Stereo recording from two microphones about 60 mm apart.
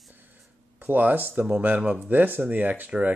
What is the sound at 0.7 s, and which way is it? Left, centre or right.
Speech, right.